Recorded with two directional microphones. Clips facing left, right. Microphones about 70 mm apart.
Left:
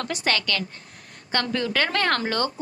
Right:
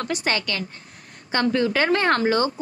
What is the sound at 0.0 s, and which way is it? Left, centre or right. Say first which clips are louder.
A woman's voice: right 1 dB; right.